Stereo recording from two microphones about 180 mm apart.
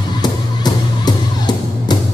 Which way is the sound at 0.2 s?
25° left (ahead or behind).